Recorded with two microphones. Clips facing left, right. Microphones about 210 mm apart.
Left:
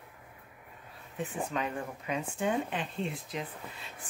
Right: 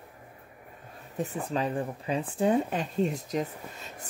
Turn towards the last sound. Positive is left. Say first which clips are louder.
# right 3 dB
turn(degrees=-45)  # may be behind; listen again after turning